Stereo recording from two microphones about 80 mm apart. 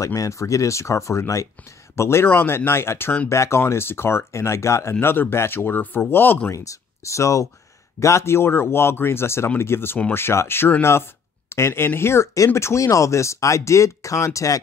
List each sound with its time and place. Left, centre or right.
0.0 s speech: left
6.5 s speech: left